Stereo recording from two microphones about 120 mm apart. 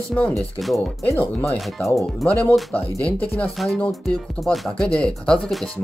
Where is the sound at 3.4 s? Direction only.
Centre (ahead or behind).